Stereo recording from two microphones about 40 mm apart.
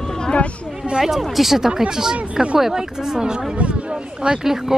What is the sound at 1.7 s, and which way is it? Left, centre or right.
Speech, centre.